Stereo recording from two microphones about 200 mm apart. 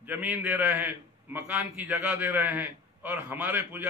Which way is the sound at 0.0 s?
10° right (ahead or behind).